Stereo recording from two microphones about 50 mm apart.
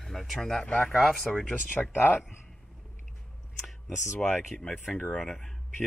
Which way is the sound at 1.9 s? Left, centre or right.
Left.